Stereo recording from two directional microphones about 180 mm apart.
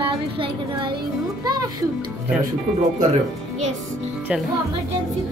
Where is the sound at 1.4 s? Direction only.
20° right (ahead or behind).